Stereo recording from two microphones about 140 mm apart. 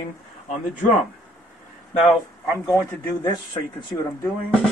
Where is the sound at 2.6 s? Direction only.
30° left (ahead or behind).